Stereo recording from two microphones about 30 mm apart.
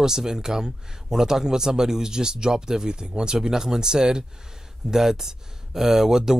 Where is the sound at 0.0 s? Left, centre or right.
Centre.